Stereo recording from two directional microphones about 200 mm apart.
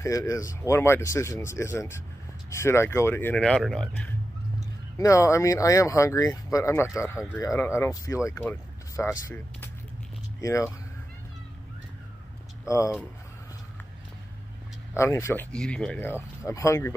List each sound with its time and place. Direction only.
0.0 s speech: 15° left (ahead or behind)
4.9 s speech: 15° left (ahead or behind)
10.4 s speech: 15° left (ahead or behind)
12.6 s speech: 15° left (ahead or behind)
15.0 s speech: 15° left (ahead or behind)